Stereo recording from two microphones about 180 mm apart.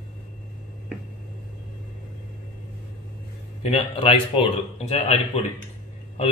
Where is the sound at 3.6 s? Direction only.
30° left (ahead or behind).